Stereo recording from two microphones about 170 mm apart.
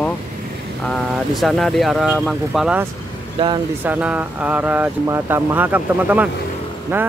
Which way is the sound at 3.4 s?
30° right (ahead or behind).